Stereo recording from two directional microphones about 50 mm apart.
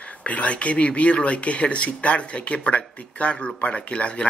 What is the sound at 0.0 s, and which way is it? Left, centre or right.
Speech, left.